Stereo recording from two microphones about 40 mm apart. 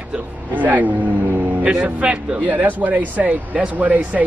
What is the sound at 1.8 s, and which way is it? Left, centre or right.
Speech, right.